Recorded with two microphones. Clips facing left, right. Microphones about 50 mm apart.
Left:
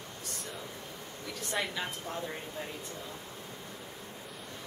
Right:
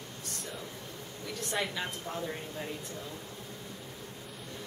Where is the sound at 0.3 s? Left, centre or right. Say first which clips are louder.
Right 1 dB; centre.